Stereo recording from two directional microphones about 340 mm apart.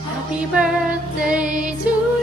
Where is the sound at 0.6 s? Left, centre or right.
Centre.